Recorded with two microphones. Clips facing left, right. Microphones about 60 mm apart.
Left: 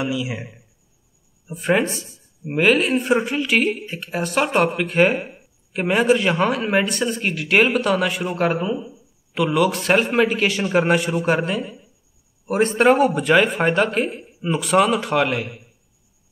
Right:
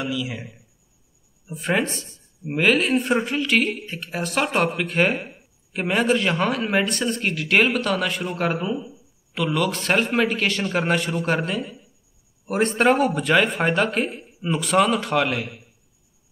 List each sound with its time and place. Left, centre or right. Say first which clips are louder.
0.0 s a man's voice: left 3 dB; centre
1.5 s speech: left 4 dB; centre